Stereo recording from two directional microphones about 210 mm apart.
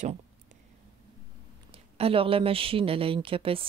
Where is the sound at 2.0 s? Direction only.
25° right (ahead or behind).